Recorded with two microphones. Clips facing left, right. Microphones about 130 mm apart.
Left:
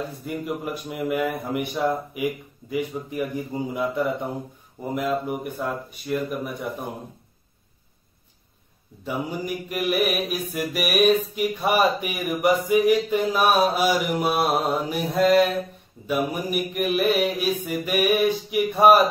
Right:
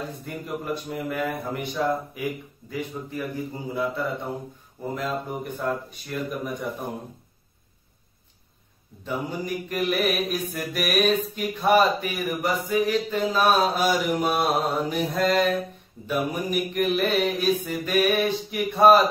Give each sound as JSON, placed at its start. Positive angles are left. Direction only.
{"t": 0.3, "sound": "mantra", "side_deg": 10}
{"t": 9.0, "sound": "mantra", "side_deg": 10}